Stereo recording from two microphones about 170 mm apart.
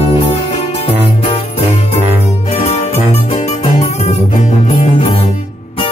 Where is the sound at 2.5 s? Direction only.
35° left (ahead or behind).